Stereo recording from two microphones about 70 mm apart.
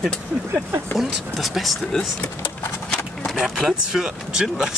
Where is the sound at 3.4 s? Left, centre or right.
Centre.